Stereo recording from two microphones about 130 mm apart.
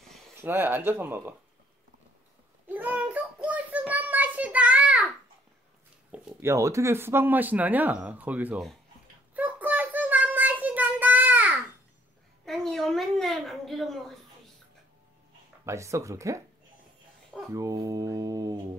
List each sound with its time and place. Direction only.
0.4 s speech: 15° right (ahead or behind)
2.7 s child singing: 10° right (ahead or behind)
6.4 s speech: 20° right (ahead or behind)
9.3 s child singing: 10° right (ahead or behind)
12.4 s a sound: centre (ahead or behind)
15.6 s mantra: 20° right (ahead or behind)
17.6 s mantra: 25° right (ahead or behind)